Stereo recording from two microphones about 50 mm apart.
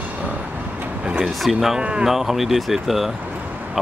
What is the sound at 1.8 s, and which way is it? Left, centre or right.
Speech, right.